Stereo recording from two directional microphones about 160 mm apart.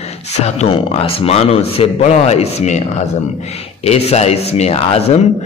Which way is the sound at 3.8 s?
40° left (ahead or behind).